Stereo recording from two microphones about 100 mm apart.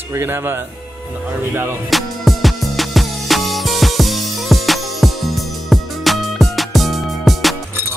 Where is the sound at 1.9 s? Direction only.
Centre (ahead or behind).